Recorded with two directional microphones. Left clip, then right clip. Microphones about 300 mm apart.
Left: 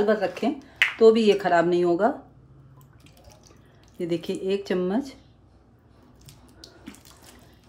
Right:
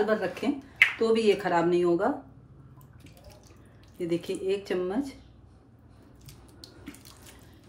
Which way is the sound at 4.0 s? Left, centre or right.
Left.